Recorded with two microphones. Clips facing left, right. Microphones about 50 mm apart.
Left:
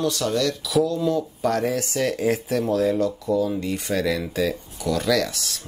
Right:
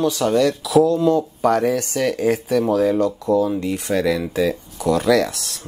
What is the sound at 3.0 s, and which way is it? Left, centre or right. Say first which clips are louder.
Speech: right 4 dB; centre.